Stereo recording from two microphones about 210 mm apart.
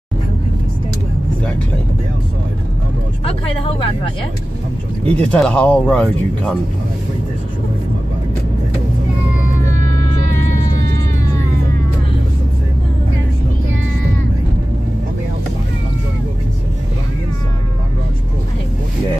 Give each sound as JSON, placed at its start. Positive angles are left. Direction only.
{"t": 3.3, "sound": "speech", "side_deg": 25}
{"t": 5.0, "sound": "speech", "side_deg": 5}